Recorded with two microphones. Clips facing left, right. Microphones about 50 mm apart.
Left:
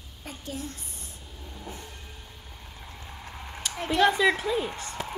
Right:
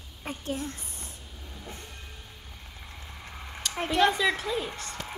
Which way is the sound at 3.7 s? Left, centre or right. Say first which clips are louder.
Right 2 dB; centre.